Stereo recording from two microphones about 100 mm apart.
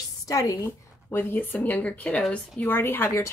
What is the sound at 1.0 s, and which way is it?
A woman's voice, 20° left (ahead or behind).